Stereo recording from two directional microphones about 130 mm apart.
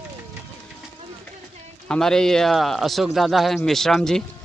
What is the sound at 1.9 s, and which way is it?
A man's voice, 5° left (ahead or behind).